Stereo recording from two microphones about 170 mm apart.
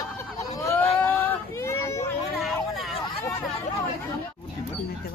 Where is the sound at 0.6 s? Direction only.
15° left (ahead or behind).